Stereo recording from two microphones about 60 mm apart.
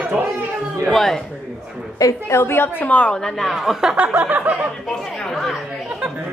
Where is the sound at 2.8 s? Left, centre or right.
Left.